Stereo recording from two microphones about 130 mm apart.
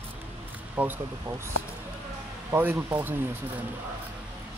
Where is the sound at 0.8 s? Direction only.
20° right (ahead or behind).